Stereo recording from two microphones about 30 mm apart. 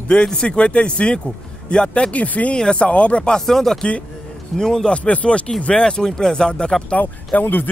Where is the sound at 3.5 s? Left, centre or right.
Centre.